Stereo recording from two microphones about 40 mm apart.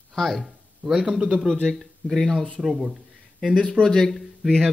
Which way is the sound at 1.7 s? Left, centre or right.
Centre.